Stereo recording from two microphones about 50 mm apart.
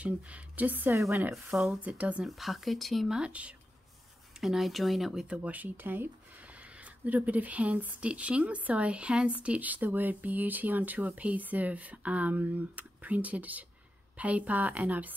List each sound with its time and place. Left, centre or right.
0.0 s speech: right
1.3 s speech: centre
1.9 s speech: right
2.2 s speech: centre
3.3 s speech: right
4.4 s speech: centre
5.4 s speech: right